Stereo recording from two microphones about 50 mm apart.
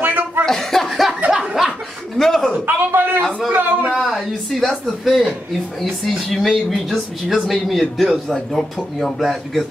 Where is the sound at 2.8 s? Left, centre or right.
Right.